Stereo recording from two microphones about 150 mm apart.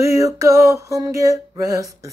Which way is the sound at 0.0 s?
20° right (ahead or behind).